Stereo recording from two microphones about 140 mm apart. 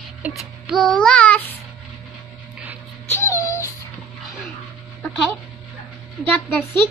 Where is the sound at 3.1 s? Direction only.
20° left (ahead or behind).